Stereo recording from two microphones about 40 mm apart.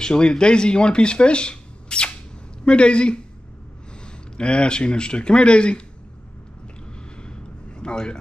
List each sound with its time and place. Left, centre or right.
0.0 s speech: left
6.9 s vehicle: left